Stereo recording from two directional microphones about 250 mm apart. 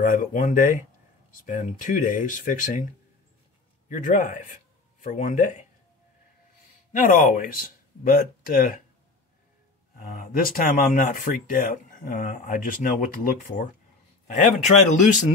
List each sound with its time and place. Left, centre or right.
0.0 s speech: left
3.9 s speech: left
6.9 s speech: left
9.9 s speech: left